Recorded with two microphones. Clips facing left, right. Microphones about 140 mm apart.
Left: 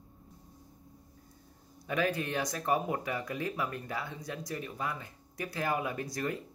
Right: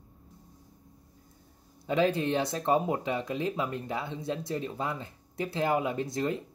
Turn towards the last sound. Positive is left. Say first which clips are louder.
# right 5 dB
turn(degrees=-25)  # may be behind; listen again after turning